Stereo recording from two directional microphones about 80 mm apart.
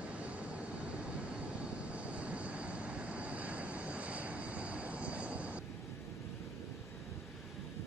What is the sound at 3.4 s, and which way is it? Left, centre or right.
Vehicle, centre.